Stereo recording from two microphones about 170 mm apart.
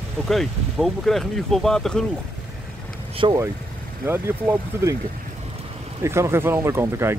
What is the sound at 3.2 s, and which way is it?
Speech, 30° right (ahead or behind).